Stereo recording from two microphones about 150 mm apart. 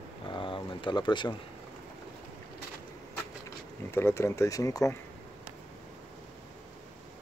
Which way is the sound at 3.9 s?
15° left (ahead or behind).